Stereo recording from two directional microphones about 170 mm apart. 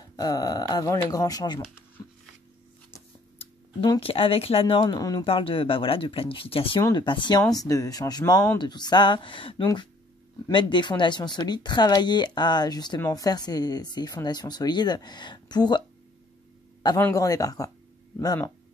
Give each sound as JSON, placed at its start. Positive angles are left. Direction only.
{"t": 0.1, "sound": "speech", "side_deg": 20}
{"t": 3.8, "sound": "speech", "side_deg": 25}
{"t": 4.1, "sound": "speech", "side_deg": 35}
{"t": 5.2, "sound": "speech", "side_deg": 35}
{"t": 17.0, "sound": "speech", "side_deg": 20}